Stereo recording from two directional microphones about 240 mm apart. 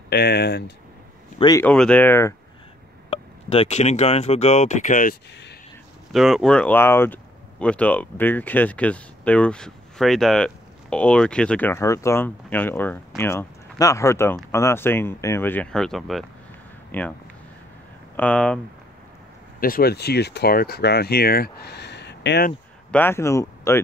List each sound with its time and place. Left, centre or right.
0.1 s speech: left
1.4 s speech: centre
1.7 s speech: centre
3.1 s speech: left
6.1 s speech: centre
18.1 s speech: centre
19.6 s speech: left
22.8 s speech: centre